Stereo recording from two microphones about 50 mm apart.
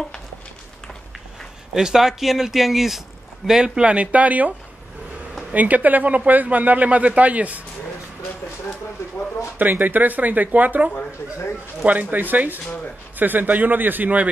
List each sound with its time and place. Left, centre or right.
1.7 s speech: centre
3.6 s speech: right
9.6 s speech: right